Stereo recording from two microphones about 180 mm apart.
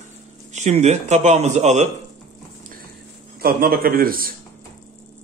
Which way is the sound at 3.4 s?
55° right (ahead or behind).